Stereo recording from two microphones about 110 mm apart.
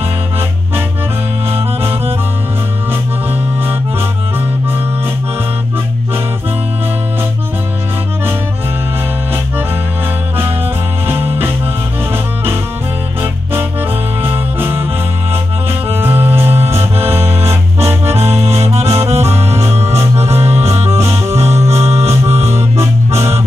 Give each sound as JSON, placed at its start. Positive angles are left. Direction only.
{"t": 1.5, "sound": "music", "side_deg": -20}
{"t": 11.1, "sound": "music", "side_deg": -20}
{"t": 13.2, "sound": "music", "side_deg": -20}
{"t": 15.9, "sound": "music", "side_deg": -20}
{"t": 17.2, "sound": "accordion", "side_deg": -70}
{"t": 17.5, "sound": "music", "side_deg": -25}
{"t": 18.1, "sound": "accordion", "side_deg": -75}
{"t": 19.0, "sound": "music", "side_deg": -75}
{"t": 19.4, "sound": "music", "side_deg": -25}
{"t": 19.7, "sound": "music", "side_deg": -75}
{"t": 21.0, "sound": "music", "side_deg": -25}
{"t": 21.7, "sound": "organ", "side_deg": -75}
{"t": 22.3, "sound": "music", "side_deg": -75}
{"t": 22.8, "sound": "music", "side_deg": -25}